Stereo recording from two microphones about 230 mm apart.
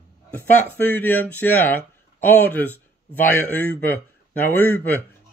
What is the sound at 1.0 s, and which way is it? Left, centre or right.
A man's voice, centre.